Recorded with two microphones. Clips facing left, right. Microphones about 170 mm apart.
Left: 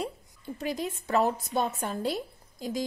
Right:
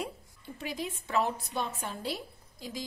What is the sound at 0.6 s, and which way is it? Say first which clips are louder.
A woman's voice: left 5 dB; 45° left (ahead or behind).